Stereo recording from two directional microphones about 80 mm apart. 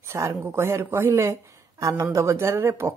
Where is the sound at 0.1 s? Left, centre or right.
Right.